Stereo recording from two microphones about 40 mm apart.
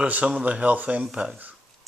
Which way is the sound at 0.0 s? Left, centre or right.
Right.